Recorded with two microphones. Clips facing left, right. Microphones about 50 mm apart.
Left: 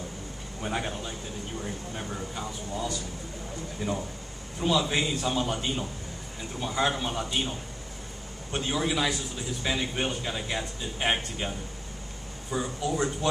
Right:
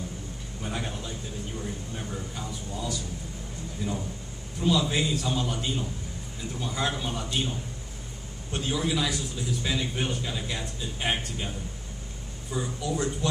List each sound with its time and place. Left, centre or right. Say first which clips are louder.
0.6 s a man's voice: left 3 dB; centre
3.8 s speech: left 1 dB; left